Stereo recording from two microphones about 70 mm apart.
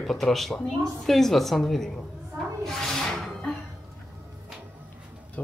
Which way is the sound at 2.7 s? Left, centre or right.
Centre.